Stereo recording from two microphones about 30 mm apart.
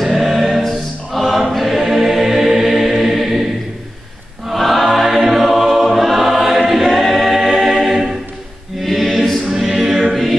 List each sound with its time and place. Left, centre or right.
0.0 s choir: centre
4.5 s choir: centre
7.6 s music: centre
9.5 s choir: centre